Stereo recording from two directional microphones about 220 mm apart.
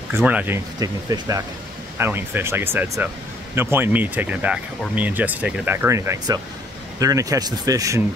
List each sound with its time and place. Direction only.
0.1 s speech: 5° right (ahead or behind)